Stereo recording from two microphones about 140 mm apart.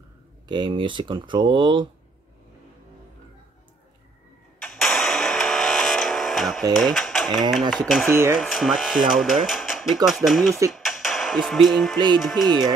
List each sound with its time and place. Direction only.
0.5 s speech: 35° right (ahead or behind)
4.6 s a sound: centre (ahead or behind)
6.7 s speech: centre (ahead or behind)
8.1 s speech: 20° right (ahead or behind)
8.4 s speech: centre (ahead or behind)